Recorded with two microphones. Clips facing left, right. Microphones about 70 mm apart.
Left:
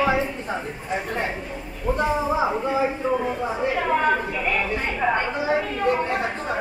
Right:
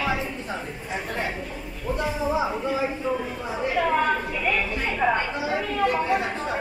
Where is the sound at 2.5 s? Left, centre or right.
Left.